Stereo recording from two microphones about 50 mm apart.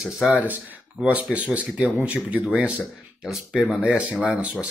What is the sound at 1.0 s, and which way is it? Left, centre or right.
Speech, right.